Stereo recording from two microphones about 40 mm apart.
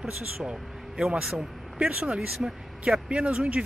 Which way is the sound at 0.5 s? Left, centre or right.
Right.